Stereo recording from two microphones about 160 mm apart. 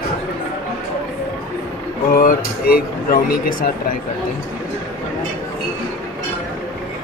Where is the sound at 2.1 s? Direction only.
65° left (ahead or behind).